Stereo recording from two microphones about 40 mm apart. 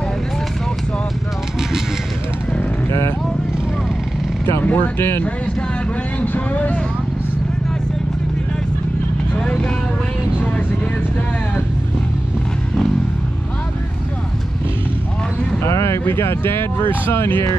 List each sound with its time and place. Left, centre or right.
4.6 s speech: left
4.9 s speech: left
6.2 s speech: left
16.1 s speech: left